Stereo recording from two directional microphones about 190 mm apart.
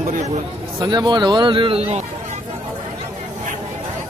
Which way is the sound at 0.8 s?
25° right (ahead or behind).